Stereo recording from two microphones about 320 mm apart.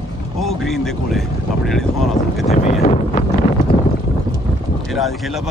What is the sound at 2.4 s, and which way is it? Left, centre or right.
Speech, centre.